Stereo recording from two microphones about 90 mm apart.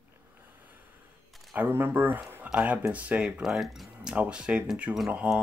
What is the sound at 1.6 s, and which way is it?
Speech, 25° right (ahead or behind).